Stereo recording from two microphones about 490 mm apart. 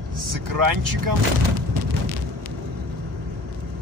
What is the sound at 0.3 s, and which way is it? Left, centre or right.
Speech, right.